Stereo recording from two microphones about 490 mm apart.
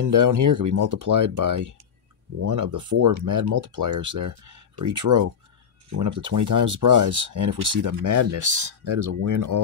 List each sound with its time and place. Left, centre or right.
0.0 s speech: right